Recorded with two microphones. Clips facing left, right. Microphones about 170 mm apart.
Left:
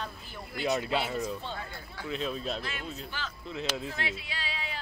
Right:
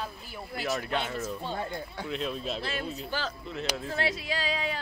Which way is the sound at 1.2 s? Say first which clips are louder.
Right 2 dB; 10° right (ahead or behind).